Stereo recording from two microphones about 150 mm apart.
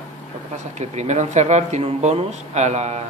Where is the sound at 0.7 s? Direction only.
50° right (ahead or behind).